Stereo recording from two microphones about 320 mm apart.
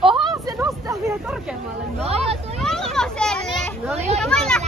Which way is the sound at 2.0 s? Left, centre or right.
Centre.